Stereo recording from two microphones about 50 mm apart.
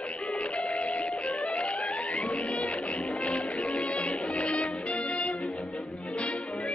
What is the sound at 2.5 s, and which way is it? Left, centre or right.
Music, left.